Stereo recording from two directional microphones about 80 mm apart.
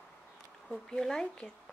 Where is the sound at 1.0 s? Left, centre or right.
Centre.